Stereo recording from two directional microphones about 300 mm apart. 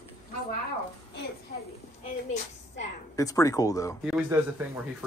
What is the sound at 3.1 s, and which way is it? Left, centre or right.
Speech, centre.